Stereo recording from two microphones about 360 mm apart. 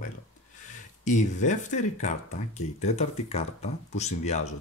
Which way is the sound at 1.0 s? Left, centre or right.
Centre.